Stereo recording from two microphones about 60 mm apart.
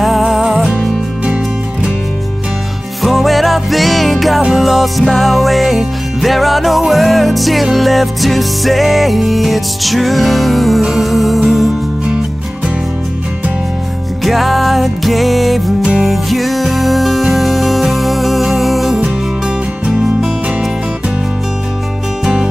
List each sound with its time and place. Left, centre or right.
0.0 s music: centre
1.2 s music: right
3.0 s music: centre
14.2 s music: centre
22.2 s music: centre